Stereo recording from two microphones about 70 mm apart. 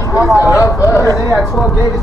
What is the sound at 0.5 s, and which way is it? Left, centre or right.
Speech, left.